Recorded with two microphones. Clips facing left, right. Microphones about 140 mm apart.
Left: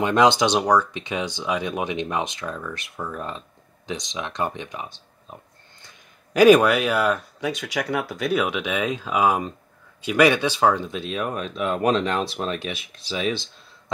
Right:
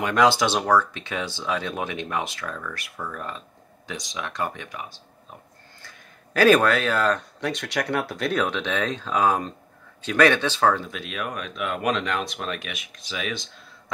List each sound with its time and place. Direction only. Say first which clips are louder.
0.0 s speech: left 2 dB; 25° left (ahead or behind)